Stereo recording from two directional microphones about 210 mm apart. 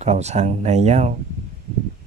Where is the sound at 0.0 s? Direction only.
30° right (ahead or behind).